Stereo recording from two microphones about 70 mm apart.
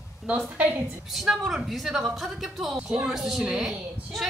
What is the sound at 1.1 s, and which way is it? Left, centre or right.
A woman's voice, centre.